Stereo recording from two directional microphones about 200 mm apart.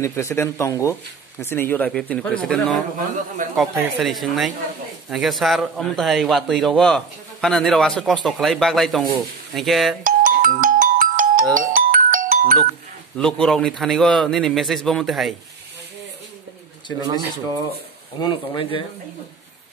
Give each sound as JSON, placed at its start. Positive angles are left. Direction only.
{"t": 0.0, "sound": "a man's voice", "side_deg": 15}
{"t": 10.0, "sound": "music", "side_deg": -45}
{"t": 13.2, "sound": "a man's voice", "side_deg": 5}
{"t": 17.5, "sound": "speech", "side_deg": 10}
{"t": 18.2, "sound": "speech", "side_deg": 20}